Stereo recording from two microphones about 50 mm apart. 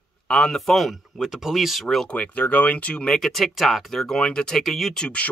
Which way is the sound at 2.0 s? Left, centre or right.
Left.